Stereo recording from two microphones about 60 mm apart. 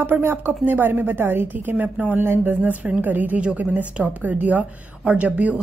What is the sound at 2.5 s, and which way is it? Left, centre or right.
Speech, right.